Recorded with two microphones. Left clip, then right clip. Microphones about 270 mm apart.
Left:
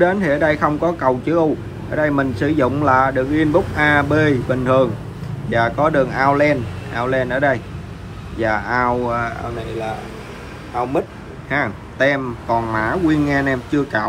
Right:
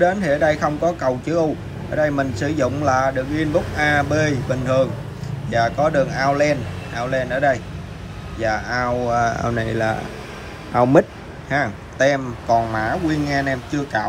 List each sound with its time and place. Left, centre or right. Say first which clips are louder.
0.0 s speech: left 1 dB; centre
10.7 s speech: right 6 dB; right
11.4 s speech: left 1 dB; centre